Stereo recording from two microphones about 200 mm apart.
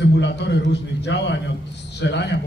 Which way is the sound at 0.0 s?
60° left (ahead or behind).